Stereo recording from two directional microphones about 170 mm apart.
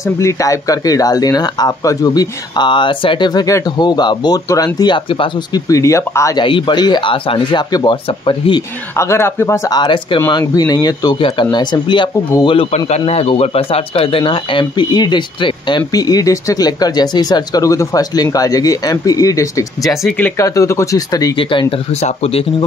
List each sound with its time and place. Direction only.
0.0 s speech: 20° left (ahead or behind)
6.4 s speech: 30° left (ahead or behind)
8.9 s speech: 15° left (ahead or behind)
20.0 s speech: 5° left (ahead or behind); by 22.5 s 35° left (ahead or behind)